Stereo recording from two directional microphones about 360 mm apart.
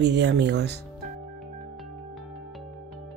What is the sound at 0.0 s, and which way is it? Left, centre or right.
Speech, right.